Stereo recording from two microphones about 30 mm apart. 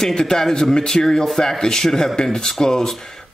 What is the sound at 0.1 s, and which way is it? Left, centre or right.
A man's voice, left.